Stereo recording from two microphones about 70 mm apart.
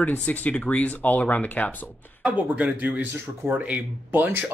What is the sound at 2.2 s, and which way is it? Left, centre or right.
Speech, centre.